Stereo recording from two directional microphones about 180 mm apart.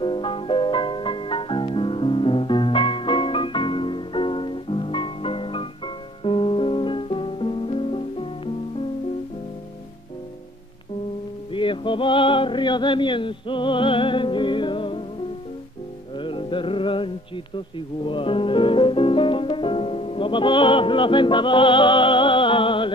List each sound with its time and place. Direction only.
0.0 s music: 30° left (ahead or behind)
11.5 s music: 25° left (ahead or behind)
16.2 s music: 30° left (ahead or behind)